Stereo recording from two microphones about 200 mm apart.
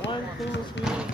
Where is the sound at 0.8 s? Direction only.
60° left (ahead or behind).